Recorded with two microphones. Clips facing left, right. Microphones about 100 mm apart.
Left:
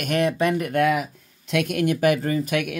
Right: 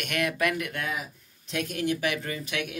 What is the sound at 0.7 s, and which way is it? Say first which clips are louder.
Speech: left 12 dB; 65° left (ahead or behind).